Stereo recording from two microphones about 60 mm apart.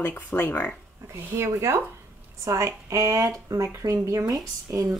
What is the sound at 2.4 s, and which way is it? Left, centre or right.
Speech, right.